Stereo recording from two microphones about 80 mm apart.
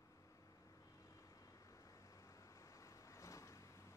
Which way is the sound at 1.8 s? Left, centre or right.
Left.